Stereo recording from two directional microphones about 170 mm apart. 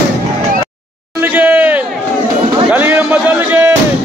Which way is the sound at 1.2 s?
10° right (ahead or behind).